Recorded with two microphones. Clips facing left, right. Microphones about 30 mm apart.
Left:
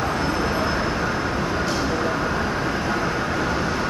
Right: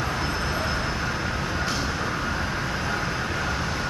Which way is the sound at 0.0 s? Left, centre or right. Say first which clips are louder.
Left 4 dB; centre.